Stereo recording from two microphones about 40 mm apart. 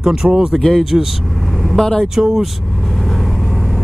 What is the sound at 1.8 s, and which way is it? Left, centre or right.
Music, centre.